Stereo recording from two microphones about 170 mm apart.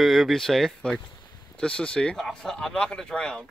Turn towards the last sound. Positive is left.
turn(degrees=5)  # may be behind; listen again after turning